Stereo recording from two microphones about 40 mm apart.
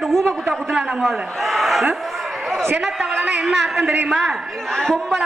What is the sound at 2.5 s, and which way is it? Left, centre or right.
Speech, right.